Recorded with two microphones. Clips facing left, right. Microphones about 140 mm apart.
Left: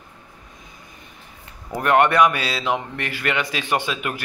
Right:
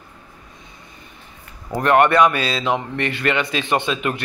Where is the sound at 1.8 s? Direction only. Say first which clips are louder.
Right 2 dB; 15° left (ahead or behind).